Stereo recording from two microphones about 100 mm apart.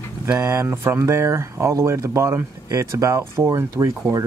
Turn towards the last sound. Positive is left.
turn(degrees=-35)  # may be behind; listen again after turning